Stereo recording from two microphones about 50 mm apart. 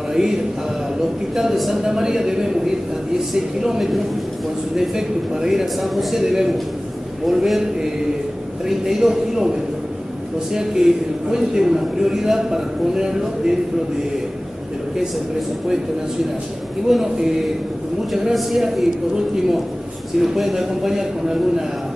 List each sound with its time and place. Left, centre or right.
0.1 s a man's voice: centre
16.9 s a man's voice: centre